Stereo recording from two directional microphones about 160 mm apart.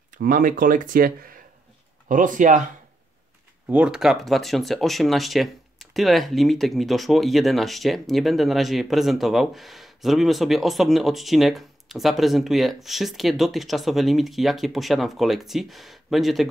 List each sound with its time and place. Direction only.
0.1 s speech: 60° right (ahead or behind)
3.6 s speech: 10° right (ahead or behind)